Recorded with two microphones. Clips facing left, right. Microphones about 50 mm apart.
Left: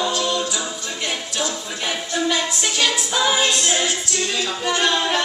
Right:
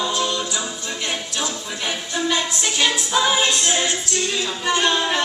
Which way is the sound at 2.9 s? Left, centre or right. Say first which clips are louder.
Right 1 dB; centre.